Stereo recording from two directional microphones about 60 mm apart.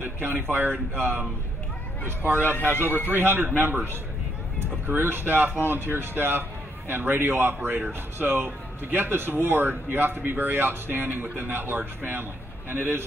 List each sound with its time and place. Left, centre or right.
0.0 s speech: right
2.7 s speech: right